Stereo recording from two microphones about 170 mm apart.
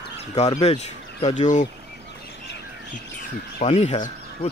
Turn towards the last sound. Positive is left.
turn(degrees=40)  # may be behind; listen again after turning